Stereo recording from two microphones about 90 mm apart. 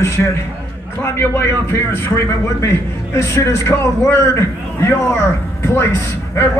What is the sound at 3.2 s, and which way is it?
A man's voice, 35° left (ahead or behind).